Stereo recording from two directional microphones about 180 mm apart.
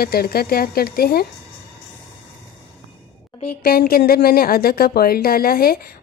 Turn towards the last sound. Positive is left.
turn(degrees=55)  # may be behind; listen again after turning